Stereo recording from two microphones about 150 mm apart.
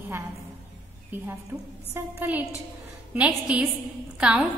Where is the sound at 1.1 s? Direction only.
15° right (ahead or behind).